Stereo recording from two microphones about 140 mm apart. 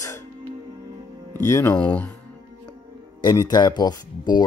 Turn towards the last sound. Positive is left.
turn(degrees=30)  # may be behind; listen again after turning